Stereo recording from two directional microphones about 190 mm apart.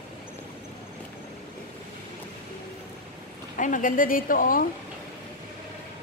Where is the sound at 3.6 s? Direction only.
45° left (ahead or behind).